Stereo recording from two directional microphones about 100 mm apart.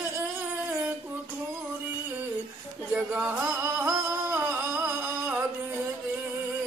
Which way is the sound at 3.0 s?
20° right (ahead or behind).